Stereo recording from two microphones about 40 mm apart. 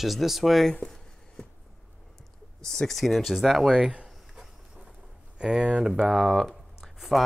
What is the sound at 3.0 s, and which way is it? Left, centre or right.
Speech, centre.